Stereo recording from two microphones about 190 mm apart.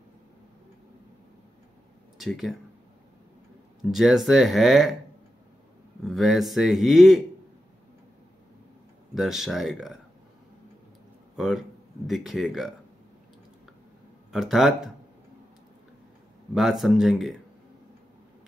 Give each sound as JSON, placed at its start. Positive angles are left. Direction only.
{"t": 2.1, "sound": "speech", "side_deg": 0}
{"t": 3.9, "sound": "speech", "side_deg": 0}
{"t": 6.0, "sound": "speech", "side_deg": 0}
{"t": 9.1, "sound": "speech", "side_deg": 0}
{"t": 11.3, "sound": "speech", "side_deg": -5}
{"t": 14.3, "sound": "speech", "side_deg": 0}
{"t": 16.5, "sound": "speech", "side_deg": 0}